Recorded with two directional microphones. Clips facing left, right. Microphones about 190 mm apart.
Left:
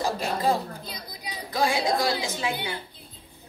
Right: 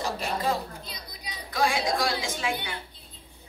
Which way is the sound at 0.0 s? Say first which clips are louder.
Left 3 dB; 35° left (ahead or behind).